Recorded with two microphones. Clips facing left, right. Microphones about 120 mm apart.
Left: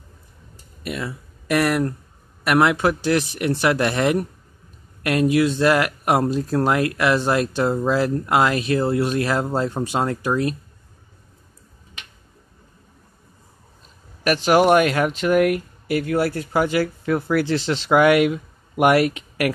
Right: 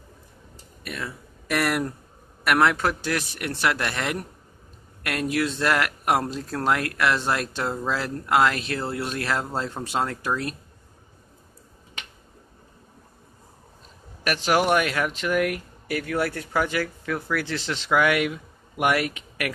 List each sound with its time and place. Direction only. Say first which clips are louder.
0.8 s speech: left 6 dB; 10° left (ahead or behind)
2.5 s speech: left 4 dB; 15° left (ahead or behind)
14.2 s speech: left 6 dB; 40° left (ahead or behind)
15.0 s speech: left 6 dB; 35° left (ahead or behind)
15.5 s speech: left 7 dB; 25° left (ahead or behind)